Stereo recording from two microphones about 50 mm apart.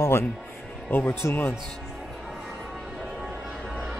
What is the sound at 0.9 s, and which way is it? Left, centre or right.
Speech, left.